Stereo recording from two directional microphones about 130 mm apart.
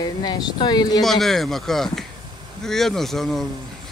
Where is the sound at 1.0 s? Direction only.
Centre (ahead or behind).